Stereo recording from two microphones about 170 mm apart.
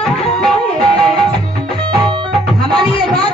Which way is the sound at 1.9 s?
25° right (ahead or behind).